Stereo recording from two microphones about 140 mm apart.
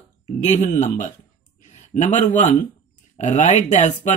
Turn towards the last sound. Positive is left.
turn(degrees=60)  # may be behind; listen again after turning